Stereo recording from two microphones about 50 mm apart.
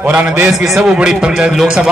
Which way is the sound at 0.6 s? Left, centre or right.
Centre.